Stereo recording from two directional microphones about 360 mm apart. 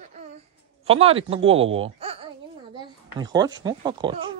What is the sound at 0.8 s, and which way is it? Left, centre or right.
Speech, centre.